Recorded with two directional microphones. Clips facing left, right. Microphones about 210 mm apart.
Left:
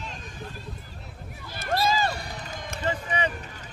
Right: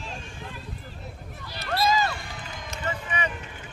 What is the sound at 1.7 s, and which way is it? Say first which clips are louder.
Run: even; 30° left (ahead or behind).